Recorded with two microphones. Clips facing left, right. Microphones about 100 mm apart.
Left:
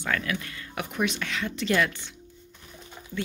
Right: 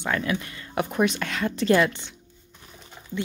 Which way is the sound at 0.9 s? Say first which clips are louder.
Right 3 dB; 40° right (ahead or behind).